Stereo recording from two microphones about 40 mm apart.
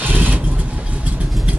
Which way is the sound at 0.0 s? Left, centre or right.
Right.